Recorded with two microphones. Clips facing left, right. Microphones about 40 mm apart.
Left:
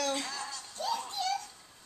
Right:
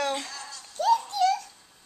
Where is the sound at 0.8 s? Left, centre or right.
Right.